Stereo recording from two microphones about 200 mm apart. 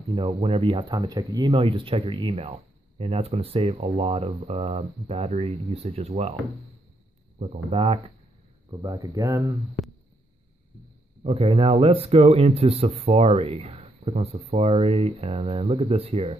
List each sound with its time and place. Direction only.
0.3 s speech: 30° right (ahead or behind)
7.4 s speech: 30° right (ahead or behind)
8.6 s speech: 20° right (ahead or behind)
11.2 s speech: 30° right (ahead or behind)